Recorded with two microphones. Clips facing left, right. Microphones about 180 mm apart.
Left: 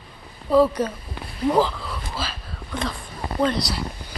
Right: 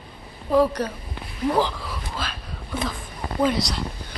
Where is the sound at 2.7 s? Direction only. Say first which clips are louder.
Even; 5° right (ahead or behind).